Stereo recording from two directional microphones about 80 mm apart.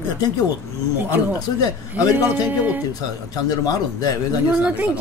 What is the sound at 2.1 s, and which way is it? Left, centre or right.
Speech, right.